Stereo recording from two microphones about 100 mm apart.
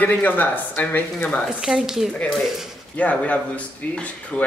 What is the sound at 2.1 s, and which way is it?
Speech, 10° left (ahead or behind).